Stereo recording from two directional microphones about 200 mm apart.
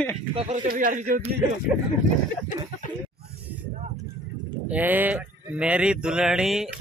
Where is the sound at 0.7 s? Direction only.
40° right (ahead or behind).